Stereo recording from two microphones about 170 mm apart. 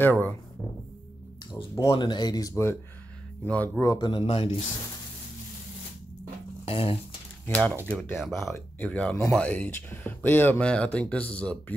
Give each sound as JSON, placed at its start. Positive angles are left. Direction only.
{"t": 0.0, "sound": "speech", "side_deg": 10}
{"t": 1.9, "sound": "speech", "side_deg": 25}
{"t": 3.8, "sound": "speech", "side_deg": 25}
{"t": 6.6, "sound": "a sound", "side_deg": 35}
{"t": 7.4, "sound": "speech", "side_deg": 5}